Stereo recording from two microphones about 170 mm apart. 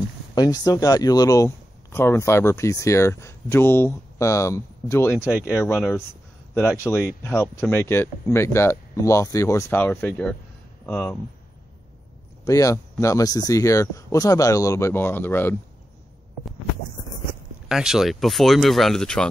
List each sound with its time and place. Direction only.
0.3 s speech: 25° left (ahead or behind)
12.4 s speech: 20° left (ahead or behind)
17.6 s speech: 5° right (ahead or behind)